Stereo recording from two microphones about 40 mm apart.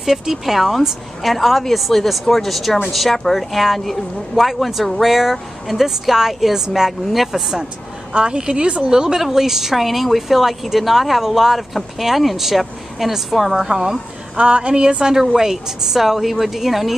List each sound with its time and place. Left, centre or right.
0.0 s speech: centre
8.2 s speech: right
14.3 s speech: right
15.1 s a woman's voice: centre